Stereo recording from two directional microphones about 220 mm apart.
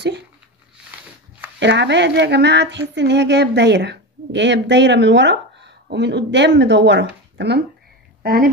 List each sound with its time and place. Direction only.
1.6 s speech: 55° right (ahead or behind)